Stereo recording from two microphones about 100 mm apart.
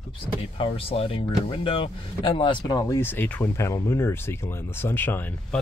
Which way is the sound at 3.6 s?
30° left (ahead or behind).